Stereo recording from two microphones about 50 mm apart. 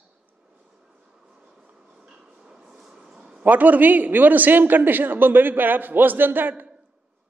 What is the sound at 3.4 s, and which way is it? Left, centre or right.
A man's voice, right.